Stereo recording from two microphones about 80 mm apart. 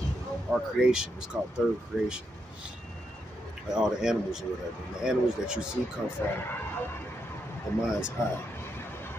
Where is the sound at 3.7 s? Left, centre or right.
Centre.